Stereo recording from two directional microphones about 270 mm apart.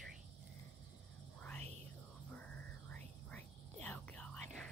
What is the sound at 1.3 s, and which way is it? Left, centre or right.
Whispering, centre.